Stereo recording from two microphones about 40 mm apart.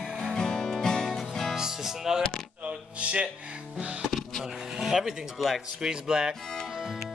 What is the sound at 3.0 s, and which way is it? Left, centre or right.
Music, right.